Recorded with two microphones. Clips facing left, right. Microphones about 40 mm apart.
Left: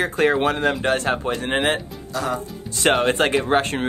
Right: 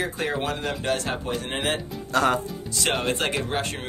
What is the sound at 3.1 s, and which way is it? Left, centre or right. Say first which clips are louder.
Speech: left 7 dB; left.